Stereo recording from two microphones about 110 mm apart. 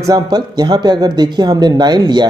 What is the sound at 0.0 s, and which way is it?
Speech, 35° right (ahead or behind).